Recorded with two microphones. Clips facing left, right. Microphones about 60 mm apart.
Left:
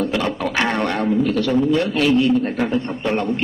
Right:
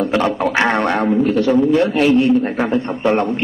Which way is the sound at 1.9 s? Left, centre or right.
Right.